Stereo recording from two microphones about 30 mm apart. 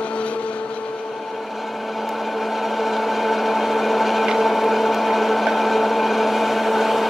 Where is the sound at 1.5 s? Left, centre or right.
Centre.